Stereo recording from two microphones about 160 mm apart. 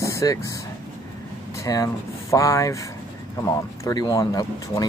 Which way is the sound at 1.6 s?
20° left (ahead or behind).